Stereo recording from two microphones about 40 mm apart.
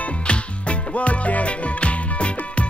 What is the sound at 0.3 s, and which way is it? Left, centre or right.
Music, left.